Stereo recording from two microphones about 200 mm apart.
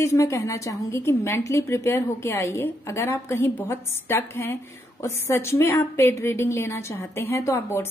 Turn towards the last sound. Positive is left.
turn(degrees=15)  # may be behind; listen again after turning